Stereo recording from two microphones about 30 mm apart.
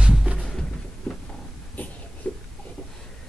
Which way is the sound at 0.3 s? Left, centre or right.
Right.